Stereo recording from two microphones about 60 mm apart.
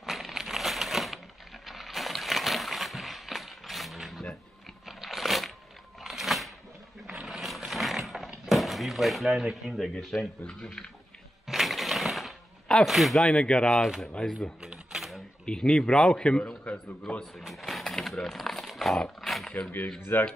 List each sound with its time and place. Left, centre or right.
0.0 s a sound: centre
1.7 s slosh: centre
4.8 s a sound: centre
8.5 s a man's voice: centre
11.4 s a sound: centre
12.8 s speech: centre
13.2 s a man's voice: centre
14.6 s camera: centre
15.4 s a man's voice: centre
17.4 s speech: centre
18.9 s dog: centre
19.6 s speech: left